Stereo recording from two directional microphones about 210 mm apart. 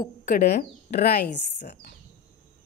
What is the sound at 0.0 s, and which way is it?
Speech, 45° left (ahead or behind).